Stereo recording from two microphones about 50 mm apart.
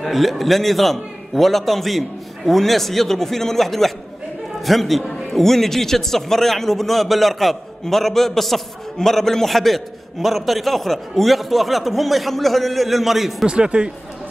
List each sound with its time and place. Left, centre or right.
0.0 s a man's voice: centre
13.5 s speech: centre